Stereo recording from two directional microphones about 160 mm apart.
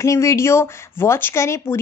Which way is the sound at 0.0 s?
20° left (ahead or behind).